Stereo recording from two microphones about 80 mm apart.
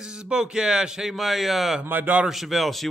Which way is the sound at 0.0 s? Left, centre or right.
Centre.